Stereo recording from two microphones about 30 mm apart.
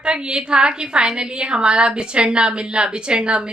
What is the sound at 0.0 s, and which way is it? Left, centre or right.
A woman's voice, right.